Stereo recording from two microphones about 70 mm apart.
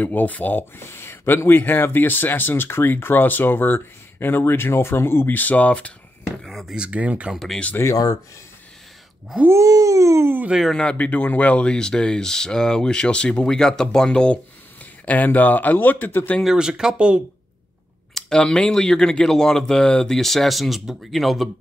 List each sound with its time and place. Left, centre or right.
0.0 s speech: left
6.4 s speech: centre
6.7 s speech: centre
7.7 s speech: left
9.5 s a sound: right
10.7 s speech: centre
15.0 s speech: left
16.4 s speech: centre
18.1 s speech: centre